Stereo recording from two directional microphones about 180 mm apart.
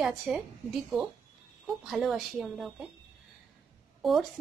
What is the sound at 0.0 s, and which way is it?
Speech, 5° right (ahead or behind).